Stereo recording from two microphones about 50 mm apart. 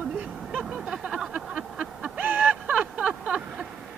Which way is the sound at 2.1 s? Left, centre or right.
Right.